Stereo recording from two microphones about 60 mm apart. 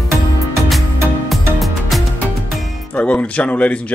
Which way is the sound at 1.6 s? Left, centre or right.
Centre.